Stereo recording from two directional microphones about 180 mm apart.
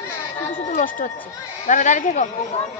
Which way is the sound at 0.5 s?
45° left (ahead or behind).